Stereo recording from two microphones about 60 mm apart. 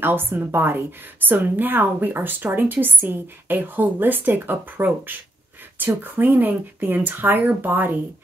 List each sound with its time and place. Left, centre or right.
0.0 s a woman's voice: right